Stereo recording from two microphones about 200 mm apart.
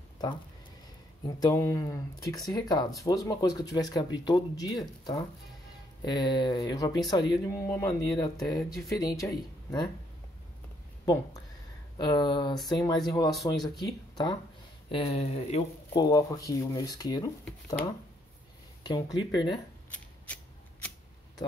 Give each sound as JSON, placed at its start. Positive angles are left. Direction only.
{"t": 1.2, "sound": "speech", "side_deg": 15}
{"t": 12.0, "sound": "speech", "side_deg": 20}
{"t": 13.3, "sound": "speech", "side_deg": 0}
{"t": 13.7, "sound": "speech", "side_deg": 20}
{"t": 18.9, "sound": "speech", "side_deg": 20}